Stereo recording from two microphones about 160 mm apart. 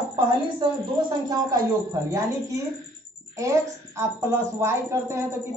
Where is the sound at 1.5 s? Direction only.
20° right (ahead or behind).